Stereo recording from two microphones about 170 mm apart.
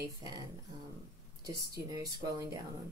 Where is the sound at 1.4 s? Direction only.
20° right (ahead or behind).